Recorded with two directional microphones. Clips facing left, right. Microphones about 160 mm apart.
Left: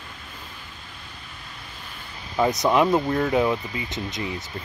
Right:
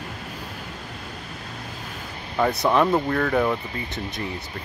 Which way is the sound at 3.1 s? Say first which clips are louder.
Even; 20° left (ahead or behind).